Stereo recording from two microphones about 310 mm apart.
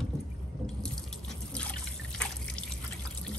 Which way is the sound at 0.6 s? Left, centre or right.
Centre.